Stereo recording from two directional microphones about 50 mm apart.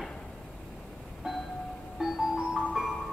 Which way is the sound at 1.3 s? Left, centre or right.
Centre.